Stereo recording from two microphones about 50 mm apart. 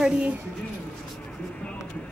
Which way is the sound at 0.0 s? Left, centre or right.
Centre.